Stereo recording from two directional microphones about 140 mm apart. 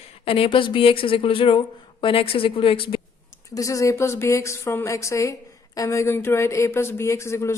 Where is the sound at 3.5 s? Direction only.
25° left (ahead or behind).